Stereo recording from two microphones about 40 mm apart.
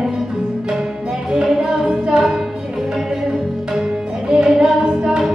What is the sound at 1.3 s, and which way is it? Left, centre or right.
Music, centre.